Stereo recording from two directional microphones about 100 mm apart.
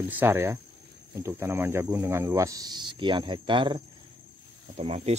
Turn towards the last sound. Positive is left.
turn(degrees=-90)